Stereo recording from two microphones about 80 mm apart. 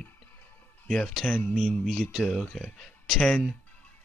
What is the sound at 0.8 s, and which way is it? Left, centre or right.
Speech, centre.